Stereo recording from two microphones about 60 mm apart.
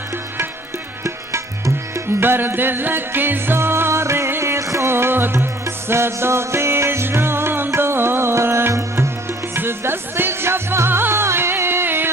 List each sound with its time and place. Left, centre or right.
2.1 s music: right
4.9 s music: right
9.6 s music: right